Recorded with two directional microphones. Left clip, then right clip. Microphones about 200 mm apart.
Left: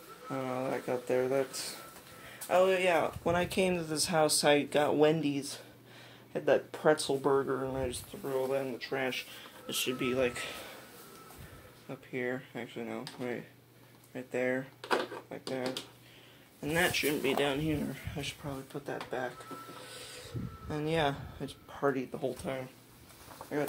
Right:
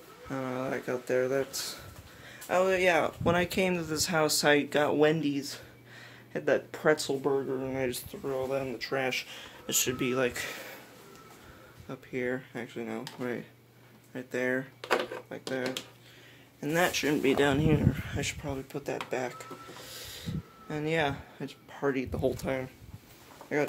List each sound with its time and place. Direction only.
0.3 s speech: 20° right (ahead or behind)
2.4 s speech: 25° right (ahead or behind)
3.3 s speech: 15° right (ahead or behind)
8.1 s speech: 30° right (ahead or behind)
11.9 s speech: 25° right (ahead or behind)
16.6 s speech: 30° right (ahead or behind)
20.6 s speech: 5° right (ahead or behind)
22.1 s speech: 35° right (ahead or behind)